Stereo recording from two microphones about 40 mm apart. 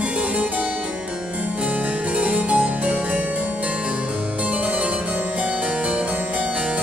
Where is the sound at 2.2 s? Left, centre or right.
Right.